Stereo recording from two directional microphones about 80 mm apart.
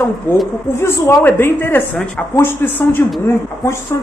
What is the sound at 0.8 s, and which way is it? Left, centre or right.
A woman's voice, left.